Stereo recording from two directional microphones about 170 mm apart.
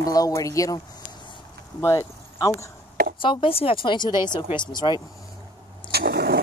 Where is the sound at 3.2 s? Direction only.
30° left (ahead or behind).